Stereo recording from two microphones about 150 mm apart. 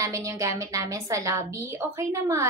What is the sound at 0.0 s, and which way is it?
A woman's voice, 20° right (ahead or behind).